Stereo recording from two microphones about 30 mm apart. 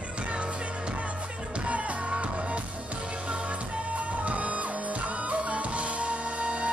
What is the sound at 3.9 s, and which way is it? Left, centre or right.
Music, right.